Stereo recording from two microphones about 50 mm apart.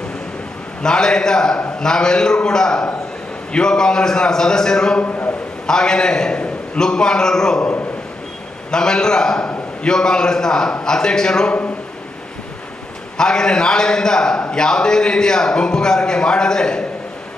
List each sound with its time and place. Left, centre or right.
0.8 s a man's voice: centre
5.0 s a sound: left
5.7 s a man's voice: centre
8.7 s a man's voice: centre
13.2 s a man's voice: centre